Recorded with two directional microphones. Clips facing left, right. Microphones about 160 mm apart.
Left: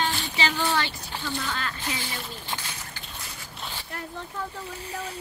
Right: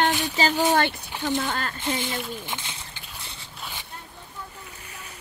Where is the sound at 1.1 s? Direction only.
15° right (ahead or behind).